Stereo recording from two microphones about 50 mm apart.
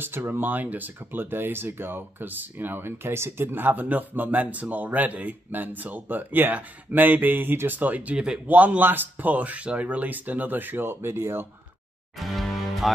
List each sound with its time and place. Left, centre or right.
0.3 s speech: right
3.5 s speech: right
12.2 s music: centre